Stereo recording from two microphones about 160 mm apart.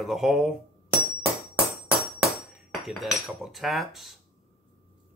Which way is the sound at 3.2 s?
Centre (ahead or behind).